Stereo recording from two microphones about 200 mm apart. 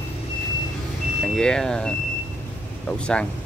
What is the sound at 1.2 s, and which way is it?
Speech, 5° left (ahead or behind).